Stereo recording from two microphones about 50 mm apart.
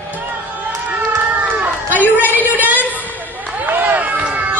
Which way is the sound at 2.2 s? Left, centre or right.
Right.